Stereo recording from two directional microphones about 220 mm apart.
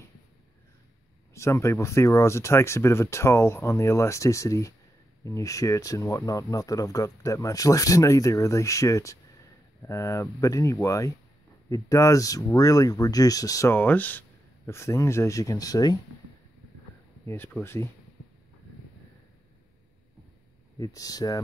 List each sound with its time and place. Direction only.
1.3 s speech: 15° left (ahead or behind)
17.3 s speech: 10° left (ahead or behind)
20.8 s speech: 15° left (ahead or behind)